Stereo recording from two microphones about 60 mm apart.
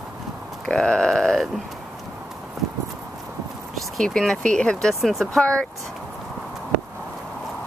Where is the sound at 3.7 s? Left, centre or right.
Centre.